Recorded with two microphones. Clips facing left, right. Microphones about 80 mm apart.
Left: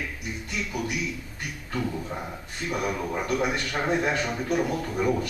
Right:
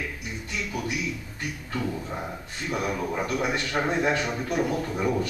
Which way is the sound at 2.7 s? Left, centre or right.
Centre.